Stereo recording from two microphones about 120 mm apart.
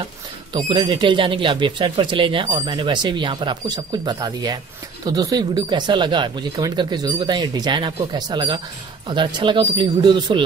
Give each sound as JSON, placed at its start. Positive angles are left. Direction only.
{"t": 0.5, "sound": "speech", "side_deg": -45}